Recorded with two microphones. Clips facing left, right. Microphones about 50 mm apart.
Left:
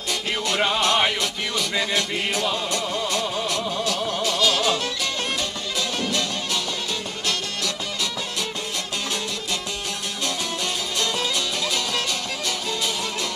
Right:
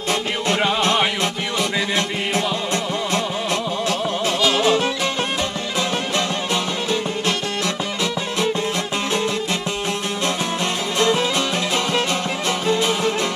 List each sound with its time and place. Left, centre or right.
2.7 s music: right
10.2 s music: right